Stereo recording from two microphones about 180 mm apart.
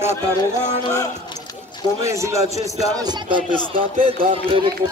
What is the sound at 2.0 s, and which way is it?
Speech, 15° right (ahead or behind).